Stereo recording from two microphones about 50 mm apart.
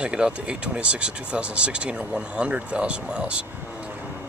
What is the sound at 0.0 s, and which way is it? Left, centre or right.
Speech, centre.